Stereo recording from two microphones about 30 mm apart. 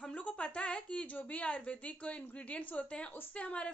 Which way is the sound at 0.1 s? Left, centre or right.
Left.